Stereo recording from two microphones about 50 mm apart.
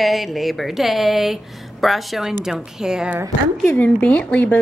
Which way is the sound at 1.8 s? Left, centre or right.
Centre.